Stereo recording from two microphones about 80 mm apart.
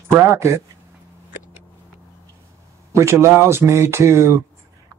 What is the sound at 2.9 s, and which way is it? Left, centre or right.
Speech, right.